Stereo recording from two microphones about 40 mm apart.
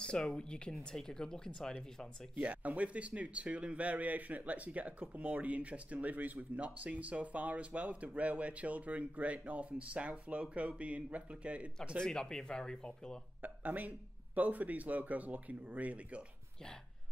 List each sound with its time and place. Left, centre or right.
0.0 s a sound: left
0.4 s speech: left
2.3 s speech: right
12.0 s speech: centre
13.4 s speech: right